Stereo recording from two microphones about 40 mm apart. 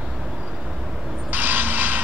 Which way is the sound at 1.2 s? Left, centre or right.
Right.